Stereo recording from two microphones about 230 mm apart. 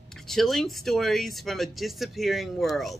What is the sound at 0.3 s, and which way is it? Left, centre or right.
Speech, centre.